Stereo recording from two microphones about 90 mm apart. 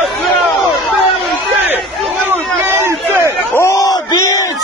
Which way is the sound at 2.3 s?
25° right (ahead or behind).